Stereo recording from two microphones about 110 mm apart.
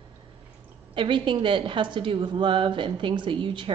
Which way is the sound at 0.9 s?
50° right (ahead or behind).